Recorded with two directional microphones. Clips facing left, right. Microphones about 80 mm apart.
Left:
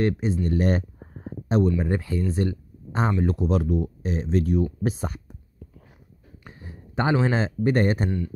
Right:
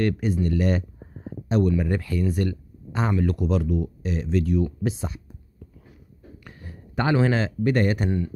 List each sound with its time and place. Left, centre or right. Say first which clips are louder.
0.0 s speech: even; left
0.5 s a sound: even; left
1.8 s speech: even; left
2.3 s a sound: even; left
3.2 s speech: even; left
6.4 s speech: left 2 dB; left